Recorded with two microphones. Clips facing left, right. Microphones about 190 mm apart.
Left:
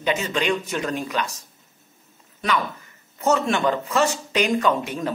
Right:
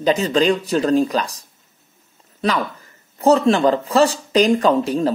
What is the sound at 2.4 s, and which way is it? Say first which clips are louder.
Speech: right 4 dB; 35° right (ahead or behind).